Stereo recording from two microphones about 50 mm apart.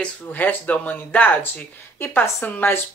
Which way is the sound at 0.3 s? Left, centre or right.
Left.